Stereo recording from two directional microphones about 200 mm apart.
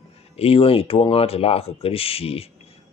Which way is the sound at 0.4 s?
30° left (ahead or behind).